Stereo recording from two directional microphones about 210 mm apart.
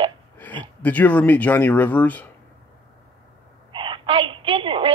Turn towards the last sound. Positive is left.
turn(degrees=-25)  # may be behind; listen again after turning